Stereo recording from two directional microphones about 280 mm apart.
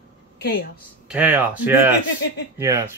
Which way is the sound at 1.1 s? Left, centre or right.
Centre.